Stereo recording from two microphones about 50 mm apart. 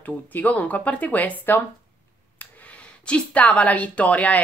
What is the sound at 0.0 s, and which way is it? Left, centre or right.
Speech, left.